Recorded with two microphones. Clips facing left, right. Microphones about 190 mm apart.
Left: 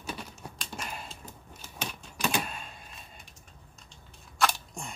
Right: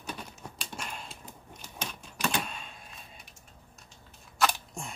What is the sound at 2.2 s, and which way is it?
Power windows, 5° left (ahead or behind).